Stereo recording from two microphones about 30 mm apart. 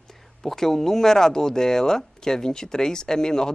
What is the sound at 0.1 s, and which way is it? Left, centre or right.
A man's voice, centre.